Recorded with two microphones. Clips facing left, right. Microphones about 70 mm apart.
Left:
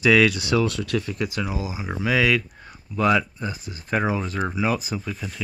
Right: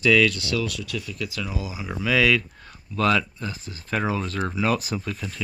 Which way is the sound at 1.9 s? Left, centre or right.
Centre.